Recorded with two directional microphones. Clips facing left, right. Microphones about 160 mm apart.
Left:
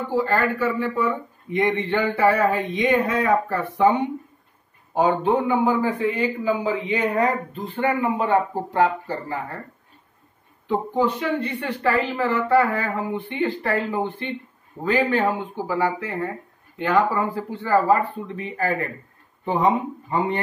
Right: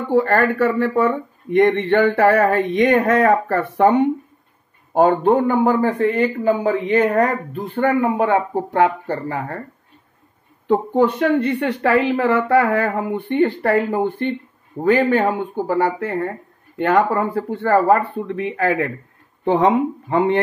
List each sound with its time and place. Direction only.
0.1 s speech: 70° right (ahead or behind)
4.9 s speech: 50° right (ahead or behind); by 9.6 s 65° right (ahead or behind)
10.7 s speech: 55° right (ahead or behind); by 20.3 s 75° right (ahead or behind)